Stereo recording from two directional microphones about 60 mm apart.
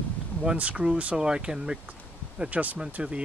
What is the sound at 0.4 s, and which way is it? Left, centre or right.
Speech, centre.